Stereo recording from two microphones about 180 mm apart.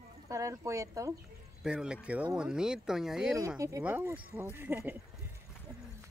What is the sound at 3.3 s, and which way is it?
Speech, 20° right (ahead or behind).